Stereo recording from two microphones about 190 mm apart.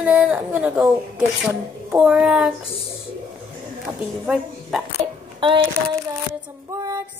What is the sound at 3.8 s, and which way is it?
A woman's voice, 5° right (ahead or behind).